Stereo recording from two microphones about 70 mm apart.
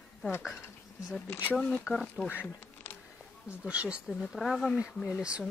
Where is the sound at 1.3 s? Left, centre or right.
Left.